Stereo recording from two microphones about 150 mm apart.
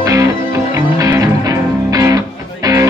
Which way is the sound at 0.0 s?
25° right (ahead or behind).